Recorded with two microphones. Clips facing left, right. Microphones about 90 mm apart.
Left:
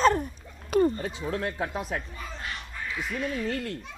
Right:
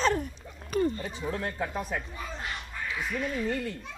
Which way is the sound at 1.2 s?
90° left.